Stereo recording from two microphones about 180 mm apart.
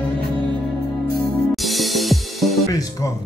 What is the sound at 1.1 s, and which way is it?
Music, centre (ahead or behind).